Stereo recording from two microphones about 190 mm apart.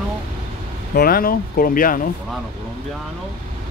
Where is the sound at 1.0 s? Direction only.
50° left (ahead or behind).